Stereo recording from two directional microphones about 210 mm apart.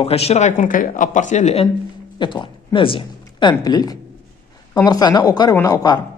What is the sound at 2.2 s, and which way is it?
A woman's voice, 20° left (ahead or behind).